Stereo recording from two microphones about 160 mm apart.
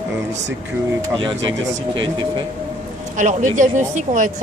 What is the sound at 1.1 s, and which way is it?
Speech, 30° right (ahead or behind).